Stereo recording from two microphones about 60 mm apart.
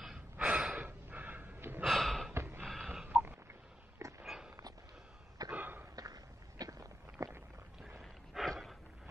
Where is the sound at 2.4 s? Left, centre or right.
Right.